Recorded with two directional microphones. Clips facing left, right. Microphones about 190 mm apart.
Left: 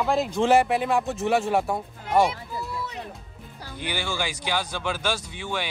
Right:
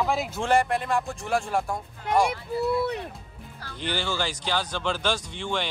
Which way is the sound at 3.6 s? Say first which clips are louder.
Right 1 dB; 10° left (ahead or behind).